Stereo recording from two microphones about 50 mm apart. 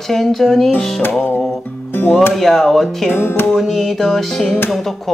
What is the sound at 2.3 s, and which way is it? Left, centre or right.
Music, centre.